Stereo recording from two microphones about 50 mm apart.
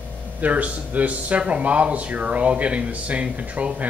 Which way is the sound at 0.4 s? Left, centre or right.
Right.